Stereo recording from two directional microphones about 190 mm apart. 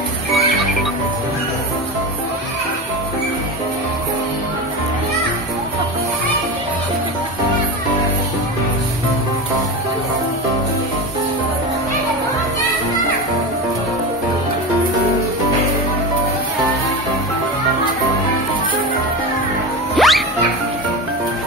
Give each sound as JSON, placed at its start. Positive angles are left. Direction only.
{"t": 20.0, "sound": "music", "side_deg": 0}